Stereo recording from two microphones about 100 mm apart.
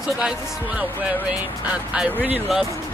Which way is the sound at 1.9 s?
15° right (ahead or behind).